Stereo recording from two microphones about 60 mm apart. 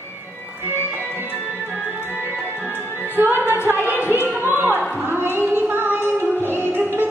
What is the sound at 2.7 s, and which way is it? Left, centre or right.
Music, left.